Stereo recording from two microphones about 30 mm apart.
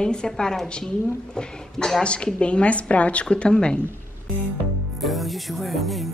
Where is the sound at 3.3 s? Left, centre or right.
Left.